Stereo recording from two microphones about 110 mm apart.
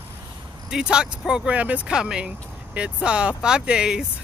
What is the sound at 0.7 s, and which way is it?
Speech, 5° right (ahead or behind).